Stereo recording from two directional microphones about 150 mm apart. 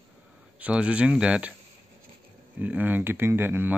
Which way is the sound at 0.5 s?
10° right (ahead or behind).